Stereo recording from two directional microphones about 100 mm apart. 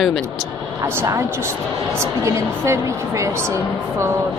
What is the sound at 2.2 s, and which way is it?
A woman's voice, 30° right (ahead or behind).